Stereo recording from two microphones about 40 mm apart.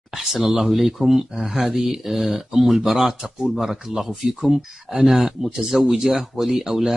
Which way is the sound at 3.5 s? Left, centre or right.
Centre.